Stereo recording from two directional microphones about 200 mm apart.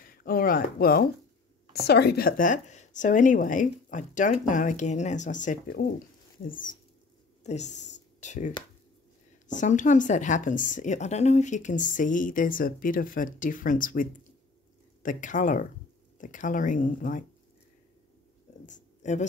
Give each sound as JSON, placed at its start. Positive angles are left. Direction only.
{"t": 0.0, "sound": "a woman's voice", "side_deg": 45}
{"t": 15.0, "sound": "a woman's voice", "side_deg": 40}
{"t": 18.7, "sound": "a sound", "side_deg": 35}